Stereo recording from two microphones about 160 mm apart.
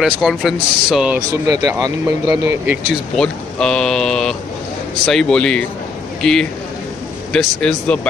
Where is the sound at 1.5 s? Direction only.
20° right (ahead or behind).